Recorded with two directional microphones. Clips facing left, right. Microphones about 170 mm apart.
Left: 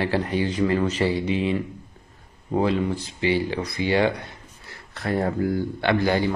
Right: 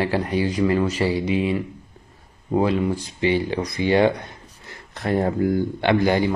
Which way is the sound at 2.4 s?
15° right (ahead or behind).